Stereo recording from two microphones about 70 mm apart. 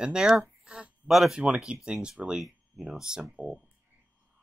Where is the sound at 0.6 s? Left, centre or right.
Centre.